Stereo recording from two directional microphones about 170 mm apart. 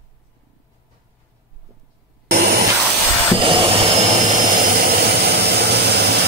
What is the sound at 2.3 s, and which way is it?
Vacuum cleaner, 75° right (ahead or behind).